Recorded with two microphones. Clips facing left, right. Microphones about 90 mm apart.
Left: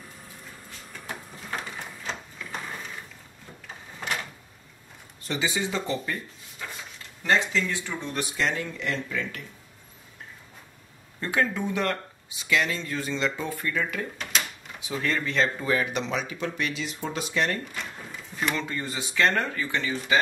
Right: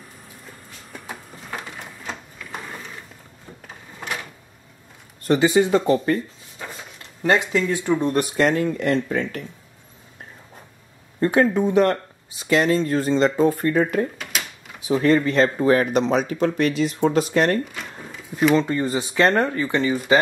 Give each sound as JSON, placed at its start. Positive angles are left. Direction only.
{"t": 4.0, "sound": "a sound", "side_deg": -10}
{"t": 5.2, "sound": "speech", "side_deg": -50}
{"t": 7.2, "sound": "speech", "side_deg": -20}
{"t": 8.0, "sound": "speech", "side_deg": -45}
{"t": 11.1, "sound": "speech", "side_deg": -40}
{"t": 17.7, "sound": "drawer open or close", "side_deg": 0}
{"t": 18.5, "sound": "speech", "side_deg": -35}